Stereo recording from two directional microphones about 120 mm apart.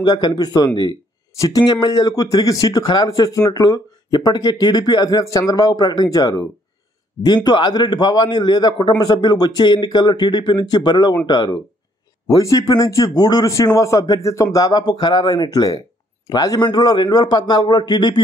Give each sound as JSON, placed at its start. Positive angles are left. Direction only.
{"t": 0.0, "sound": "a man's voice", "side_deg": 35}